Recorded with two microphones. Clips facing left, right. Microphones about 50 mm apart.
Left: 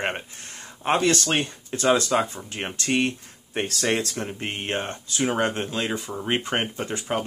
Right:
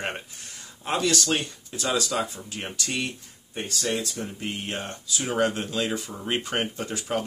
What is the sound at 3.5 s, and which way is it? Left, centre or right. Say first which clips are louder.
Speech: left 4 dB; left.